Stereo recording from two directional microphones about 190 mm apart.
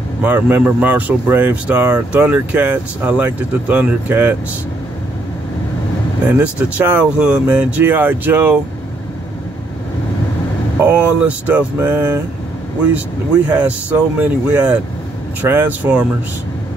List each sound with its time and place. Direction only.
0.2 s speech: 10° right (ahead or behind)
6.2 s speech: 10° right (ahead or behind)
10.8 s speech: 10° right (ahead or behind)
13.5 s speech: 5° right (ahead or behind)